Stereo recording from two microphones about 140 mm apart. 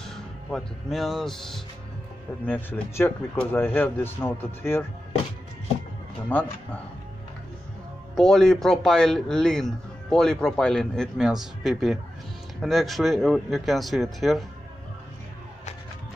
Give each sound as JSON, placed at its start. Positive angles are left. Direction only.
{"t": 0.0, "sound": "speech", "side_deg": 5}
{"t": 2.4, "sound": "speech", "side_deg": 15}
{"t": 6.2, "sound": "speech", "side_deg": 10}
{"t": 8.1, "sound": "a man's voice", "side_deg": 5}